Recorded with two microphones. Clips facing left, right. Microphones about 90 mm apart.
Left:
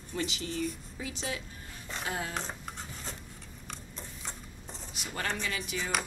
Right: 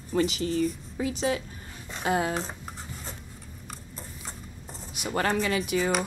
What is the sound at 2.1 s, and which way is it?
Speech, 70° right (ahead or behind).